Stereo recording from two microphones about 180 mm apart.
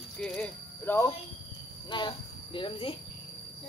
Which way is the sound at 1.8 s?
25° left (ahead or behind).